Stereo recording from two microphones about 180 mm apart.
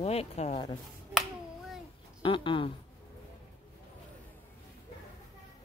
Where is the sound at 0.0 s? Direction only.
35° left (ahead or behind).